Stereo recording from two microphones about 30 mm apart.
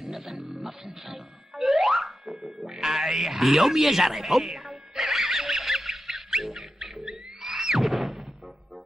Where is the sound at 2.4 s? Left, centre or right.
Right.